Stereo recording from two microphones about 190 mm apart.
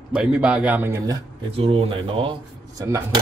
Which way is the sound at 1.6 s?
30° right (ahead or behind).